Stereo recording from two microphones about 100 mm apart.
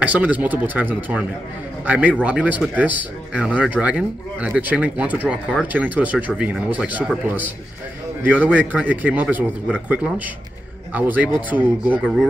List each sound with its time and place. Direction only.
0.0 s a man's voice: 15° right (ahead or behind)
8.2 s a man's voice: 15° right (ahead or behind)